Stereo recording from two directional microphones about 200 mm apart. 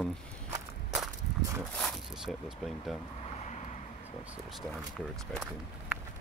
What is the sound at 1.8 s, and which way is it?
Speech, centre (ahead or behind).